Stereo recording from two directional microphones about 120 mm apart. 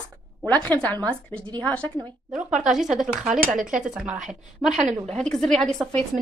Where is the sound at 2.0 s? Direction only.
10° right (ahead or behind).